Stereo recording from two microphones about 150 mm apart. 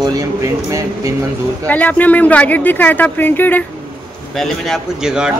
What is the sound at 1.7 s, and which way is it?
A woman's voice, 10° left (ahead or behind).